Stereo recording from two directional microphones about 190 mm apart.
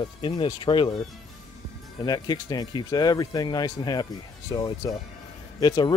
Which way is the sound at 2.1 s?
20° left (ahead or behind).